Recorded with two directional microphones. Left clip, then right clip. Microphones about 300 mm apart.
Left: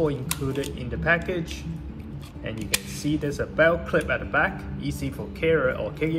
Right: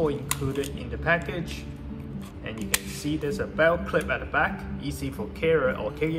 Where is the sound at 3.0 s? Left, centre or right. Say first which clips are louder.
Left 2 dB; centre.